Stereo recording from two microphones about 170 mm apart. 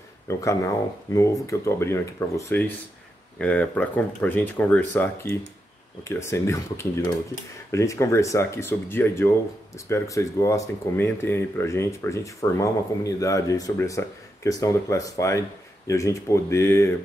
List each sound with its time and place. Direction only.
0.3 s speech: 20° left (ahead or behind)